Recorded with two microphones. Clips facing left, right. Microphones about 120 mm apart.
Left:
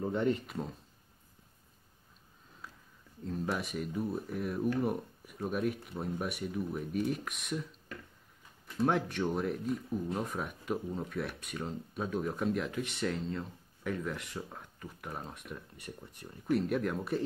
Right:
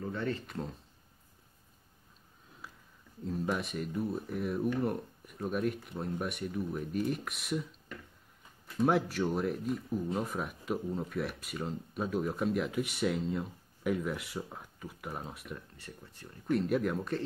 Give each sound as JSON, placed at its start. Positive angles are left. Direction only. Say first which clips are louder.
{"t": 0.0, "sound": "speech", "louder": "left 4 dB", "side_deg": 20}
{"t": 0.5, "sound": "speech", "louder": "even", "side_deg": 5}
{"t": 2.6, "sound": "a sound", "louder": "even", "side_deg": -5}
{"t": 3.3, "sound": "speech", "louder": "right 1 dB", "side_deg": 0}